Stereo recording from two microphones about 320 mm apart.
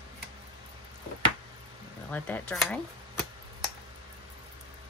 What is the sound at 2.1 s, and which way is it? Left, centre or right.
Speech, centre.